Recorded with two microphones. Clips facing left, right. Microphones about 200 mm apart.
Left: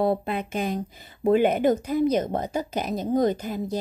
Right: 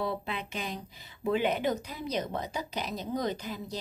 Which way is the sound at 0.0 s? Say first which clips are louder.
Left 9 dB; 50° left (ahead or behind).